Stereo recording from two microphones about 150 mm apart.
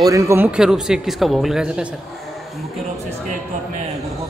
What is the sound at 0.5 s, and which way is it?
A man's voice, 5° right (ahead or behind).